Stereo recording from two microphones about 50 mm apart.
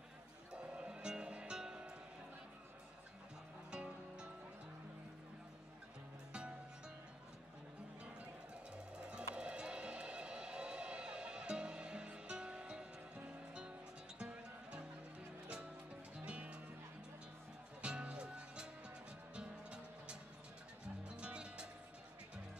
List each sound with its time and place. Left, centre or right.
0.5 s music: centre
3.7 s music: centre
8.7 s music: centre
14.1 s music: right
17.8 s music: right